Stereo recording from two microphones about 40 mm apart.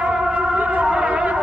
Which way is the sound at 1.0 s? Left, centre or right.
Right.